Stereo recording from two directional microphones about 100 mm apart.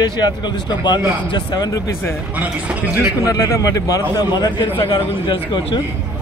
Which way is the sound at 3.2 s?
35° left (ahead or behind).